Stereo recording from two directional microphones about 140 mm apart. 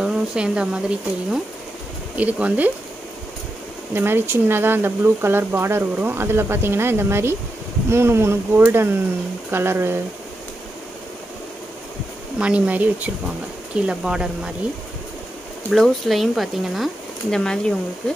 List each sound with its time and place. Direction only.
0.0 s speech: 5° right (ahead or behind)
3.9 s speech: 15° right (ahead or behind)
12.4 s speech: 10° right (ahead or behind)
15.7 s speech: centre (ahead or behind)